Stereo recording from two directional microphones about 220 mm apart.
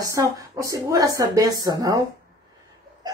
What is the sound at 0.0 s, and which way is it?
Speech, 15° right (ahead or behind).